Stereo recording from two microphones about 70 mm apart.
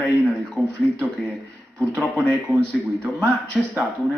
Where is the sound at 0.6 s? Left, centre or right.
Right.